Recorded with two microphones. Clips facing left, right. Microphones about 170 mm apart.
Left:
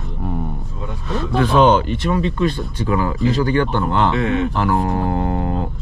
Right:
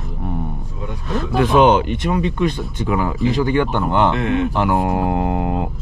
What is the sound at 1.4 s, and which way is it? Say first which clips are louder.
Speech: right 1 dB; 15° right (ahead or behind).